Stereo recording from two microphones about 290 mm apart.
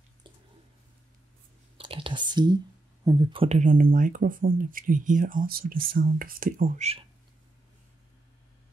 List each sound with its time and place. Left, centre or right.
1.8 s whispering: centre
3.1 s speech: centre